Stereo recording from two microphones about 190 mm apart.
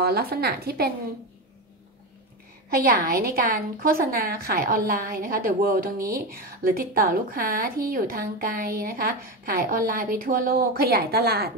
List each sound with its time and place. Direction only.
0.0 s a woman's voice: 55° right (ahead or behind)
2.8 s a woman's voice: 50° right (ahead or behind)